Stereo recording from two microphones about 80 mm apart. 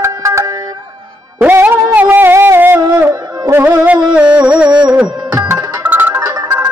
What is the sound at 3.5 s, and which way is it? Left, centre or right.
Music, right.